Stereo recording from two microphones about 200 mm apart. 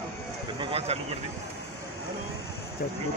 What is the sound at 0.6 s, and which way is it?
Speech, 30° right (ahead or behind).